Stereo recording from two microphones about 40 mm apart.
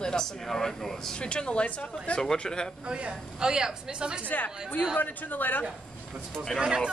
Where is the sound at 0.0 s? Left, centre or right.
Centre.